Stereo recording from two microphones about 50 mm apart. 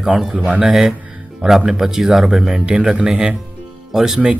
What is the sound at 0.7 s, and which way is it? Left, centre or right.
Speech, centre.